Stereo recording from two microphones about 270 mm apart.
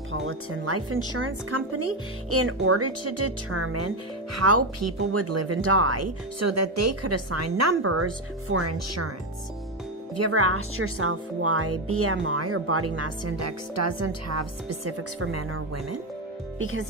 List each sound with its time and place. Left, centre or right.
0.1 s a woman's voice: right
10.1 s a woman's voice: right
16.5 s speech: right